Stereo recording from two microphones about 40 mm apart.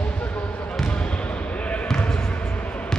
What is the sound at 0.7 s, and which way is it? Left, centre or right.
Basketball bounce, left.